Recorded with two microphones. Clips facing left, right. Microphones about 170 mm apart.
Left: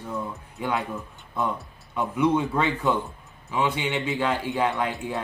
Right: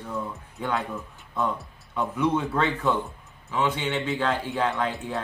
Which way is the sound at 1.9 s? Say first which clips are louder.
Left 2 dB; 15° left (ahead or behind).